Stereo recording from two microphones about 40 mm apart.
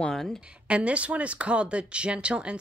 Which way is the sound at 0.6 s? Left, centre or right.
Right.